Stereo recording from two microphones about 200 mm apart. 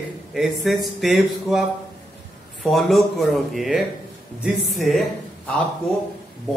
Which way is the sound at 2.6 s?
Centre (ahead or behind).